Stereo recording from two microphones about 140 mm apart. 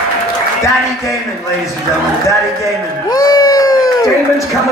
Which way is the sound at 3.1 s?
25° left (ahead or behind).